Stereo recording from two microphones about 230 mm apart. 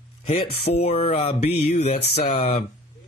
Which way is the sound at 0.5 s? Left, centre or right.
Left.